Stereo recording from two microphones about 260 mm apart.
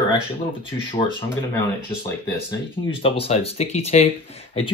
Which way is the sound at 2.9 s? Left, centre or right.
Left.